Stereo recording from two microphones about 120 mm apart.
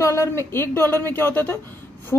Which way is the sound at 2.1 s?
20° left (ahead or behind).